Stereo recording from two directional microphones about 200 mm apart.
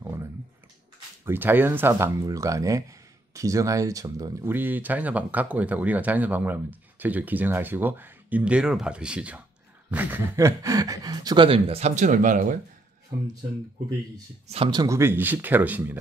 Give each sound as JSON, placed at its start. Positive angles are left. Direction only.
{"t": 0.0, "sound": "clicking", "side_deg": -15}
{"t": 1.2, "sound": "speech", "side_deg": -10}
{"t": 14.5, "sound": "speech", "side_deg": -25}